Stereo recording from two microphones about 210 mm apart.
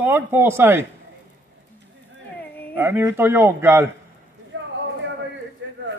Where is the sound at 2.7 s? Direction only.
10° right (ahead or behind).